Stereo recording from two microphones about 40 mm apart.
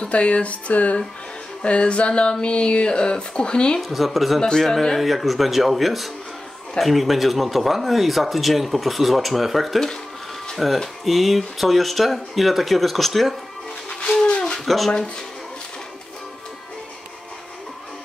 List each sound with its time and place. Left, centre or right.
0.0 s speech: left
3.9 s speech: centre
13.8 s music: left
14.6 s speech: centre